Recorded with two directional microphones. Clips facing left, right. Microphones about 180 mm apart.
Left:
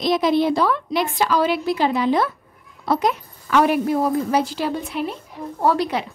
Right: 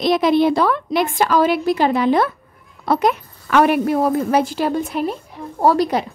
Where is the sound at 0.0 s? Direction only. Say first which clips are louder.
Right 3 dB; 60° right (ahead or behind); by 6.0 s 40° right (ahead or behind).